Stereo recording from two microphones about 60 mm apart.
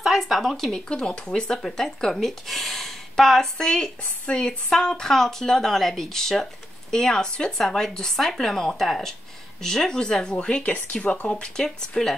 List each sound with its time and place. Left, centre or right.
0.0 s speech: centre